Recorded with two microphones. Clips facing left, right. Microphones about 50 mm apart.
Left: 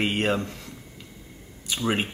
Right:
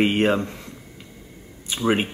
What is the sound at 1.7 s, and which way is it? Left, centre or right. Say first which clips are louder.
Speech: right 4 dB; right.